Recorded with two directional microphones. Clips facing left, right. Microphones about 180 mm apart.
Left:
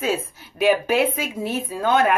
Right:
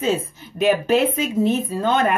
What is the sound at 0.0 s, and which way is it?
Speech, 10° left (ahead or behind).